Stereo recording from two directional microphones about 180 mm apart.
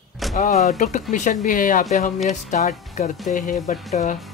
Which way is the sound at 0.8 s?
40° left (ahead or behind).